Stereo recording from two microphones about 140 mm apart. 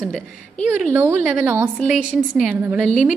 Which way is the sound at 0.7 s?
15° right (ahead or behind).